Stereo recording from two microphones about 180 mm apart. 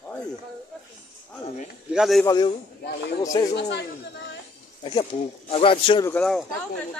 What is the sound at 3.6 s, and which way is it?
Speech, 70° left (ahead or behind).